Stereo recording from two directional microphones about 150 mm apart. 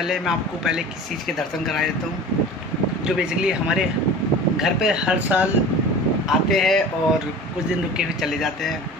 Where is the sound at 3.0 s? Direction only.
5° right (ahead or behind).